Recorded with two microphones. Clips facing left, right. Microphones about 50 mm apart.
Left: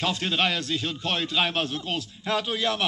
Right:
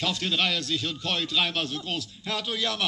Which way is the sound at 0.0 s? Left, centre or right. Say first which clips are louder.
Left 2 dB; left.